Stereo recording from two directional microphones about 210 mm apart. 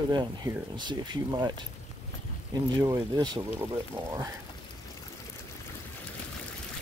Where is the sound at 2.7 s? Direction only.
20° right (ahead or behind).